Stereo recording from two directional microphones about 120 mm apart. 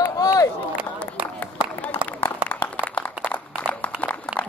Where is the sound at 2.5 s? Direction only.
10° left (ahead or behind).